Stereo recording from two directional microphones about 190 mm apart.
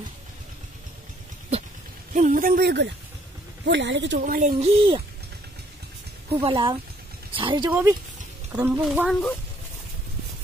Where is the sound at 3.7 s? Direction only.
70° right (ahead or behind).